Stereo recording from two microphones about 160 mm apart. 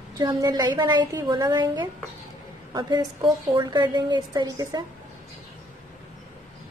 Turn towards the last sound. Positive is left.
turn(degrees=-25)  # may be behind; listen again after turning